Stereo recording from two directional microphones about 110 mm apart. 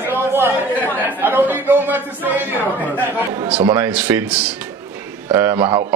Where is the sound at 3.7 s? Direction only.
20° right (ahead or behind).